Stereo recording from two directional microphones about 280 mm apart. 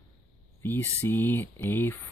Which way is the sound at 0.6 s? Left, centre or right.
Centre.